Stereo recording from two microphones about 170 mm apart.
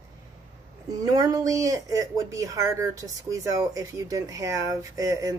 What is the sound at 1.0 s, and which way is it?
Speech, 20° right (ahead or behind).